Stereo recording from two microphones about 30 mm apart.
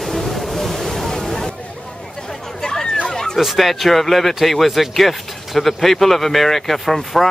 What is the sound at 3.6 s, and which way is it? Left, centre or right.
Speech, centre.